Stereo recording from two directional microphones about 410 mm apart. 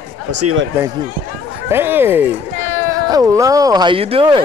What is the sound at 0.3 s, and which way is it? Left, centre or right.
Speech, right.